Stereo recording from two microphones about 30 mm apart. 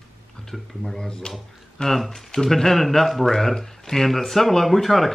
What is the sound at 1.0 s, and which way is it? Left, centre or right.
Speech, left.